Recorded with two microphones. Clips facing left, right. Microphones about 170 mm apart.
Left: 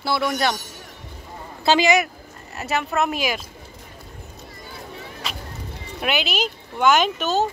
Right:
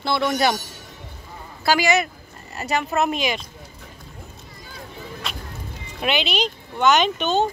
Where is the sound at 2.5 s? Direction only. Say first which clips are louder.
Right 1 dB; centre (ahead or behind).